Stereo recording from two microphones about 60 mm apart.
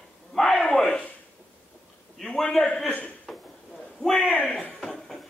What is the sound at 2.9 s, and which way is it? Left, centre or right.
Speech, left.